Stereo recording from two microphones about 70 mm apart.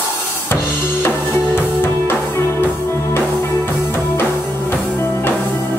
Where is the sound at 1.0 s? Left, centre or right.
Left.